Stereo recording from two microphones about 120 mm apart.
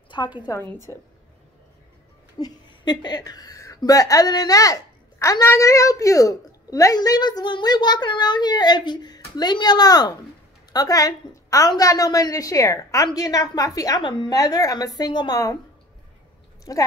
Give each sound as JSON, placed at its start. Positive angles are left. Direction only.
{"t": 0.1, "sound": "a woman's voice", "side_deg": 40}
{"t": 0.6, "sound": "a woman's voice", "side_deg": 20}
{"t": 2.3, "sound": "a woman's voice", "side_deg": 35}
{"t": 16.7, "sound": "a woman's voice", "side_deg": 30}